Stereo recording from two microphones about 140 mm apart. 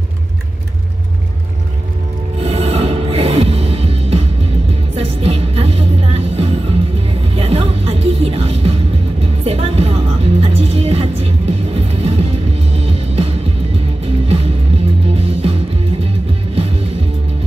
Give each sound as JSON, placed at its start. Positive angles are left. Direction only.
{"t": 2.4, "sound": "music", "side_deg": -45}